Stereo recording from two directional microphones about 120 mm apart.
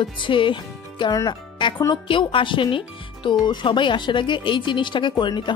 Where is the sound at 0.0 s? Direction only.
45° left (ahead or behind).